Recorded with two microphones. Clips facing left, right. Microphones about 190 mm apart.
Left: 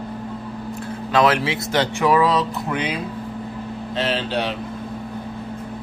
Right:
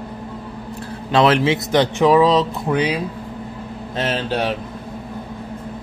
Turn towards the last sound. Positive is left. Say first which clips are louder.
# right 1 dB
turn(degrees=-45)  # may be behind; listen again after turning